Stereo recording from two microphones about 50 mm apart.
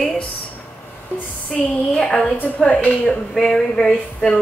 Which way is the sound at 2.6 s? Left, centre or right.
Left.